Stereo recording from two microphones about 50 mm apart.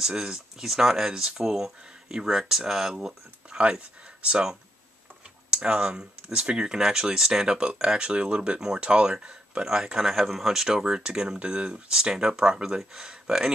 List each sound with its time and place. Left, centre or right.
0.0 s speech: centre
3.6 s speech: right